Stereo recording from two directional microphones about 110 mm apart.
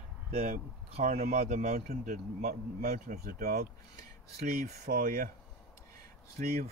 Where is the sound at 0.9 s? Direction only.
75° right (ahead or behind).